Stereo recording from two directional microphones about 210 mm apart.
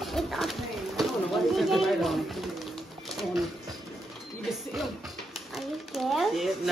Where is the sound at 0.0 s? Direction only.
Centre (ahead or behind).